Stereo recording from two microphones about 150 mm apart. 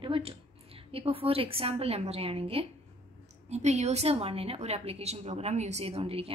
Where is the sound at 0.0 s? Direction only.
35° right (ahead or behind).